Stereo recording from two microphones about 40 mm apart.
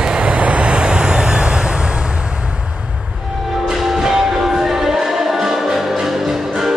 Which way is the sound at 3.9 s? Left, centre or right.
Centre.